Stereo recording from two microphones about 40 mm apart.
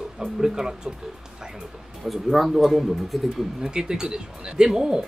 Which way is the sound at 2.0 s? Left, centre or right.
Centre.